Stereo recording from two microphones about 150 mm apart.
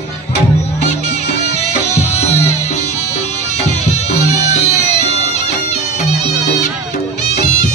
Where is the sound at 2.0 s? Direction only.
45° left (ahead or behind).